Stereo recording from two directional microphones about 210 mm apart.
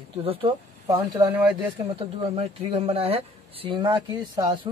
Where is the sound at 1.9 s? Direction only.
25° right (ahead or behind).